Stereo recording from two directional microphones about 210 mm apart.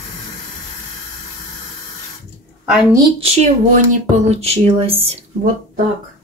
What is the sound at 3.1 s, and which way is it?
Speech, 30° right (ahead or behind).